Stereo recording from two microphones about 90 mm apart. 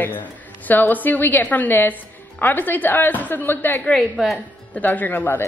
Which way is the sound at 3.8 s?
5° left (ahead or behind).